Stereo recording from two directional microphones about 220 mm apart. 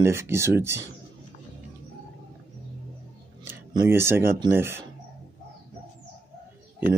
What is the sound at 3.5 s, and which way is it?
Speech, 10° right (ahead or behind).